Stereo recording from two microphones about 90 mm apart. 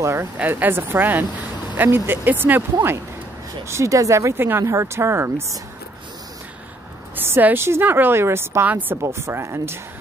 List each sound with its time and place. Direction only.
0.2 s a woman's voice: 20° right (ahead or behind)
7.2 s a woman's voice: 25° right (ahead or behind)
9.0 s a woman's voice: 30° right (ahead or behind)